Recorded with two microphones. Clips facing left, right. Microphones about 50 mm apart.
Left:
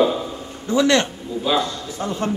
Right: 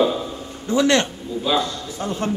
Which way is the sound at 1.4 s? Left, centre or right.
Left.